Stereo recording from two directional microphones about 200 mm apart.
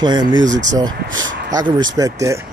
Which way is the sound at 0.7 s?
20° right (ahead or behind).